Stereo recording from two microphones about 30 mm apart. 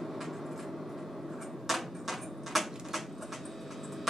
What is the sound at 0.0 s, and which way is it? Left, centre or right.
Train, centre.